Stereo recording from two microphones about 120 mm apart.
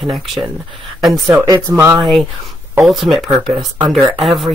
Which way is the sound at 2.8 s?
Centre (ahead or behind).